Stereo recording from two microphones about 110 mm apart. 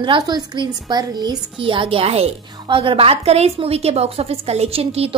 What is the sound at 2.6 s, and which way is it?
A woman's voice, 50° right (ahead or behind).